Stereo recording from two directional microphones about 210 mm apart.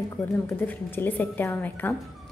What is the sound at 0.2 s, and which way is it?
A woman's voice, 10° left (ahead or behind).